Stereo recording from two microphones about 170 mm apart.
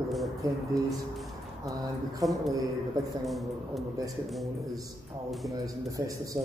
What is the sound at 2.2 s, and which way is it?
Speech, 20° right (ahead or behind).